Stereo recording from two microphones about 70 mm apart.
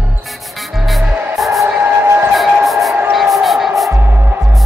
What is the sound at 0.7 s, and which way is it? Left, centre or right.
Music, centre.